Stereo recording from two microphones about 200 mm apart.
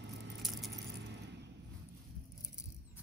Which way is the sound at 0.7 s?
60° right (ahead or behind).